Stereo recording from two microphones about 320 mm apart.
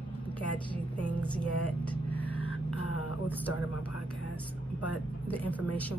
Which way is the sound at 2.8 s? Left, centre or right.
Left.